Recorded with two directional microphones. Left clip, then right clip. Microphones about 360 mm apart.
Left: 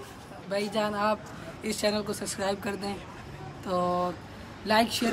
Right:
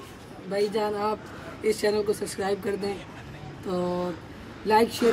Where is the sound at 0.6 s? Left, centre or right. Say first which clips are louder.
Right 3 dB; centre.